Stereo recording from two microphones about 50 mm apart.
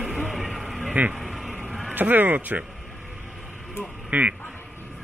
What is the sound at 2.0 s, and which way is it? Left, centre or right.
Speech, right.